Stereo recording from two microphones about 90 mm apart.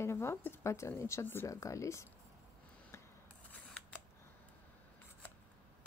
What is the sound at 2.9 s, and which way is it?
Rub, 30° left (ahead or behind).